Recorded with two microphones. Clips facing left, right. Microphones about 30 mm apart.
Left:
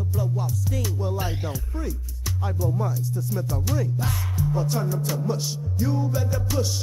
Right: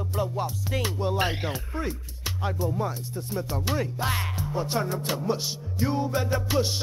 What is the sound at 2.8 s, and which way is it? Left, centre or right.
Music, right.